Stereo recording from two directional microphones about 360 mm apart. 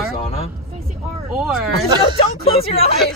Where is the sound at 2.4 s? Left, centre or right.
Centre.